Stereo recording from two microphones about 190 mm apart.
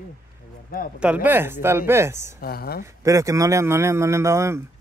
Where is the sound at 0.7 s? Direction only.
50° left (ahead or behind).